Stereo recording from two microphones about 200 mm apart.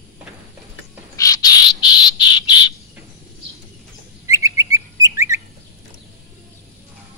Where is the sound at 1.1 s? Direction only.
15° left (ahead or behind).